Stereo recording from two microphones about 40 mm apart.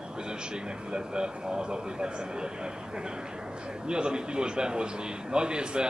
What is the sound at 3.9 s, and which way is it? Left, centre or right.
A man's voice, right.